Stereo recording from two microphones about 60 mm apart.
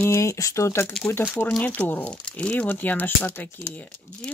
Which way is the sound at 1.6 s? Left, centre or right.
Left.